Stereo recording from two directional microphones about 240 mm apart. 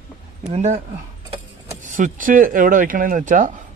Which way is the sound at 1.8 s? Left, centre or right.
Right.